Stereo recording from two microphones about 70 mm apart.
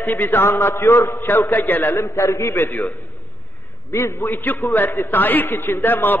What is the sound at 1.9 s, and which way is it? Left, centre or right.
Speech, left.